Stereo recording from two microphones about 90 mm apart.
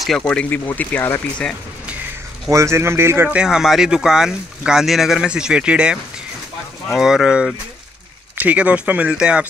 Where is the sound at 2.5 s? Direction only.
30° right (ahead or behind).